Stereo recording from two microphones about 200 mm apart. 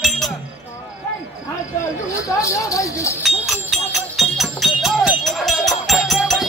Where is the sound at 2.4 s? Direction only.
15° left (ahead or behind).